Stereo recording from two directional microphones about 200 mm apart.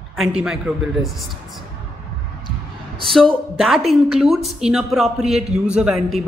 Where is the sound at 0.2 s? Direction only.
5° right (ahead or behind).